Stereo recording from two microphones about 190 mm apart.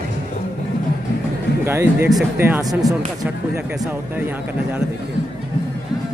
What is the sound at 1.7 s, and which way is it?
A man's voice, 15° right (ahead or behind).